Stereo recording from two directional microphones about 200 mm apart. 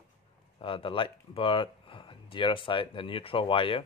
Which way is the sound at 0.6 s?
25° left (ahead or behind).